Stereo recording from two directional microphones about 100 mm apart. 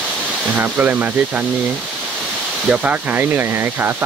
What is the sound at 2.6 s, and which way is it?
Speech, 15° right (ahead or behind).